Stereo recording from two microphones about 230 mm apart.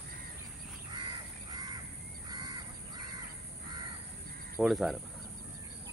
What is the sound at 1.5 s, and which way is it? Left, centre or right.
Crow, centre.